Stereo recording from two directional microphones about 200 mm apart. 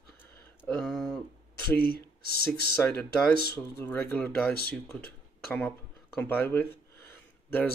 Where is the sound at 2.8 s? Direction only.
10° left (ahead or behind).